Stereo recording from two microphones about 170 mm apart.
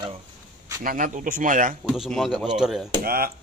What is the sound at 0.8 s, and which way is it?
Speech, 50° right (ahead or behind).